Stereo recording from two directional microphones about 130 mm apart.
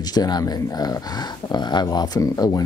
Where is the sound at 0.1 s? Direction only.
30° left (ahead or behind).